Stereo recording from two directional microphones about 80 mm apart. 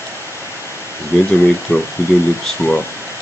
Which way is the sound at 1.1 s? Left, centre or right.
Left.